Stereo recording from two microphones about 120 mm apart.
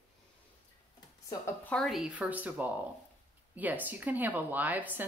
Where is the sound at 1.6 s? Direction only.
5° left (ahead or behind).